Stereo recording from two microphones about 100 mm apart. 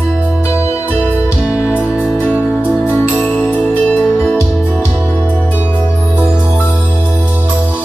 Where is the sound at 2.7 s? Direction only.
15° right (ahead or behind).